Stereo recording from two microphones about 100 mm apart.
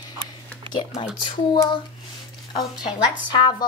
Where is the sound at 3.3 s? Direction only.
50° left (ahead or behind).